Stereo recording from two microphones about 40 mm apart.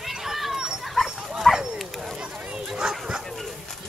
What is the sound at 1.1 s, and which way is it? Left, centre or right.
Dog, centre.